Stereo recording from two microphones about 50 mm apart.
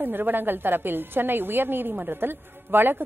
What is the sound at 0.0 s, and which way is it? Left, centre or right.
A woman's voice, right.